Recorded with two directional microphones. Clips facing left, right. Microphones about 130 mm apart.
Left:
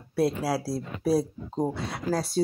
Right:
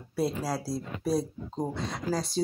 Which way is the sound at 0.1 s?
5° left (ahead or behind).